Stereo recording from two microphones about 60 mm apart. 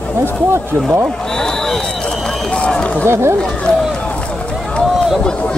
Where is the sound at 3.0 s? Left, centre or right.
Right.